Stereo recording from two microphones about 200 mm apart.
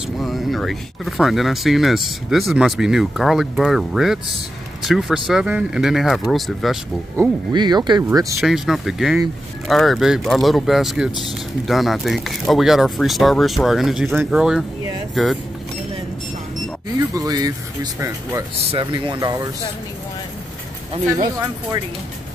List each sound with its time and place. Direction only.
0.2 s speech: centre (ahead or behind)
7.2 s speech: 20° right (ahead or behind)
8.4 s speech: centre (ahead or behind)
17.0 s speech: 20° right (ahead or behind)